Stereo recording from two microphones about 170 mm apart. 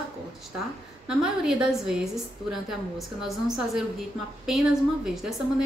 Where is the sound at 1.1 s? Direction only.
5° right (ahead or behind).